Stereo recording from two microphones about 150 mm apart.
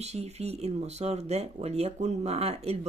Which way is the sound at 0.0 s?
45° right (ahead or behind).